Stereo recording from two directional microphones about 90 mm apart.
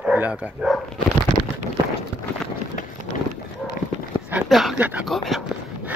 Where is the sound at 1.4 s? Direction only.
65° left (ahead or behind).